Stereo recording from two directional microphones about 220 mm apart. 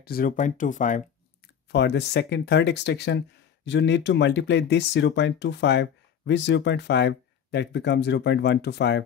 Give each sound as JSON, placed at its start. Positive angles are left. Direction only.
{"t": 0.0, "sound": "speech", "side_deg": 40}
{"t": 1.7, "sound": "speech", "side_deg": 50}